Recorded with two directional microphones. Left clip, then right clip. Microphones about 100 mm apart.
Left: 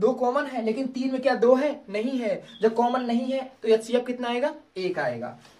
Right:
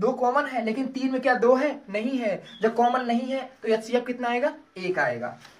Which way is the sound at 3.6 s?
30° left (ahead or behind).